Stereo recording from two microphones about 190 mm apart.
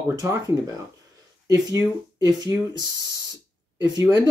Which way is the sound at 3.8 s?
20° right (ahead or behind).